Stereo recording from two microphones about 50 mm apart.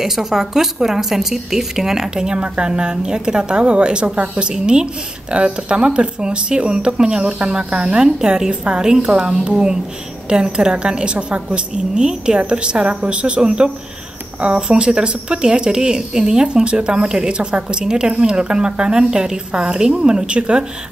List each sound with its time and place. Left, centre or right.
0.0 s speech: centre